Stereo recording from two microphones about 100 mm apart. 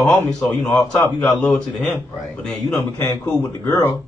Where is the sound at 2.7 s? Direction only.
30° left (ahead or behind).